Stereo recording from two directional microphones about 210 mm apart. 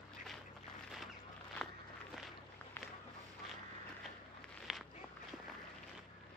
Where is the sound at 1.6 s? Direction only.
Centre (ahead or behind).